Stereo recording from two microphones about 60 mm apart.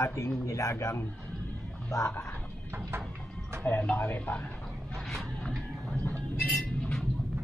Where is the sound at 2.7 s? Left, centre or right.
Right.